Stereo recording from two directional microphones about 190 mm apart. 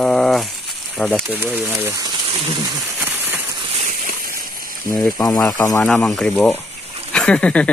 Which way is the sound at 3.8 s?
45° right (ahead or behind).